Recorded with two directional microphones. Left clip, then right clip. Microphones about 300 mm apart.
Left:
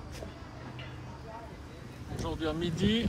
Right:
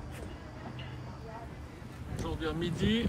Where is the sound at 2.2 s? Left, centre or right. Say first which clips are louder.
Left 2 dB; centre.